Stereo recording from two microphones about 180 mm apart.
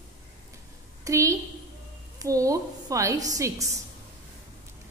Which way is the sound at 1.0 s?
15° right (ahead or behind).